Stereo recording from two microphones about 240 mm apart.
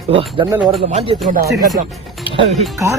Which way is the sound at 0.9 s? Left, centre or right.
Right.